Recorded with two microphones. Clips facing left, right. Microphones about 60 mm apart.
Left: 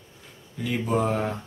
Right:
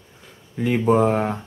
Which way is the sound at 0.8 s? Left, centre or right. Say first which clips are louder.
Right 7 dB; right.